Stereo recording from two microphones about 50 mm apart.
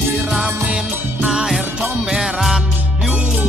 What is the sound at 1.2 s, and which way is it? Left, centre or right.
Music, centre.